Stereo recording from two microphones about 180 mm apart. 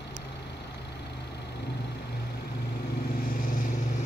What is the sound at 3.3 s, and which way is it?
Vehicle, 50° left (ahead or behind).